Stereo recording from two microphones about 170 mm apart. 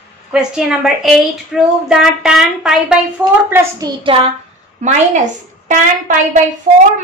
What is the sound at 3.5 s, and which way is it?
Speech, 20° right (ahead or behind).